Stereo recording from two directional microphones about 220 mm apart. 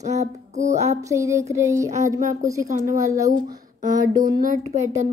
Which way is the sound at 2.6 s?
35° right (ahead or behind).